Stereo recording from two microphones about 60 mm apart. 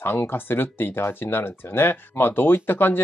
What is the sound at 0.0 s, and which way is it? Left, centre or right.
Speech, left.